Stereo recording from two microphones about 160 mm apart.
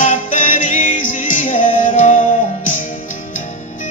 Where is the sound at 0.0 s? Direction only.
55° left (ahead or behind).